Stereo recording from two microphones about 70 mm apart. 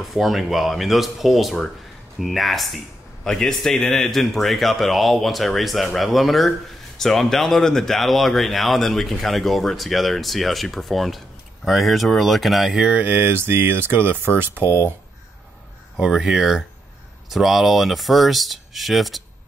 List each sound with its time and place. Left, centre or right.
0.0 s speech: centre
12.8 s speech: right
16.0 s speech: centre